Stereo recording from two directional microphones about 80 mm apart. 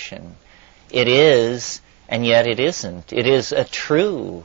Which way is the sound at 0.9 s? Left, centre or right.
Right.